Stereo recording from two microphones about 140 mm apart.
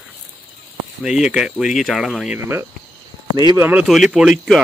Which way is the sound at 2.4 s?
15° right (ahead or behind).